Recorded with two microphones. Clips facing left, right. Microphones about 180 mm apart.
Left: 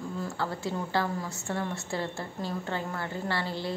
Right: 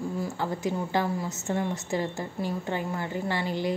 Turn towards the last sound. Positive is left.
turn(degrees=-15)  # may be behind; listen again after turning